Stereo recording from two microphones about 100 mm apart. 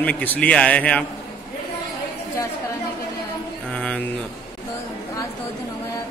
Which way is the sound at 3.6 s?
10° left (ahead or behind).